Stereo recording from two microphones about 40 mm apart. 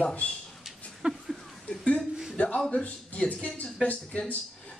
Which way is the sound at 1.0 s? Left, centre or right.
Right.